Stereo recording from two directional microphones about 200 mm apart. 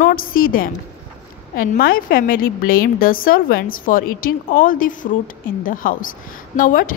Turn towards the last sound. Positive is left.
turn(degrees=45)  # may be behind; listen again after turning